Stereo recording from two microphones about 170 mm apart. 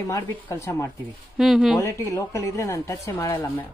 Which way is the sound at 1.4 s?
Centre (ahead or behind).